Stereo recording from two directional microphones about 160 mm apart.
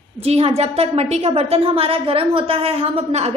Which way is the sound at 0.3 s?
40° right (ahead or behind).